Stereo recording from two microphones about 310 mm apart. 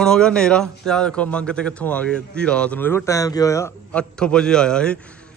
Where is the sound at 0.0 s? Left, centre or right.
Centre.